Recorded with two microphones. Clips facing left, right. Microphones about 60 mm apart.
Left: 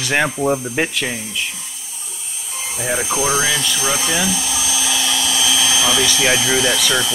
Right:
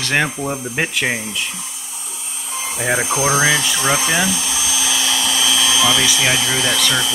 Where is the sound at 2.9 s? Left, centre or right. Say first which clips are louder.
Right 1 dB; right.